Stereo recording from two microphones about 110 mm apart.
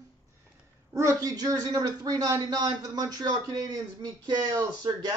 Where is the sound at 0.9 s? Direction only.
30° right (ahead or behind).